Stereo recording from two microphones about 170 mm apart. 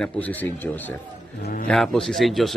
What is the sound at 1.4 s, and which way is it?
Speech, 55° left (ahead or behind).